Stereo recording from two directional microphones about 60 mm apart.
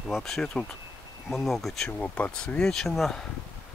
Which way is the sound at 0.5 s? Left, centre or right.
Centre.